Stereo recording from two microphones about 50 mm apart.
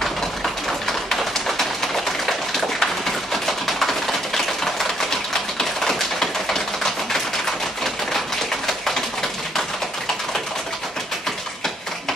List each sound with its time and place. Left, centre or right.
0.7 s bird: centre
3.4 s a sound: centre
5.6 s typewriter: centre